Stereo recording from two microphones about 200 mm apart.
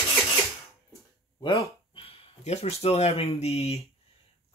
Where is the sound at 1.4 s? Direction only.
25° left (ahead or behind).